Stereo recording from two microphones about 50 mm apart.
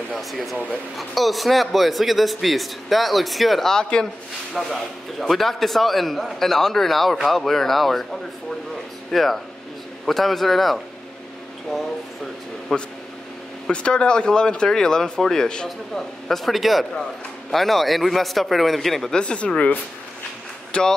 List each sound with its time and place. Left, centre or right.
0.2 s a man's voice: centre
3.7 s a man's voice: centre
12.7 s speech: centre
13.7 s a man's voice: centre
19.1 s speech: left